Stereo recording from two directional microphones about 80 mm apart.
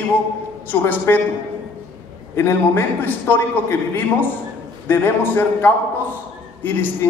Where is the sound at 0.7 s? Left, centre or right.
Left.